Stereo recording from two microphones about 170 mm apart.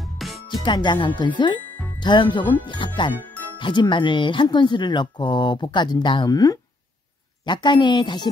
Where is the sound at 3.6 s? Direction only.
25° left (ahead or behind).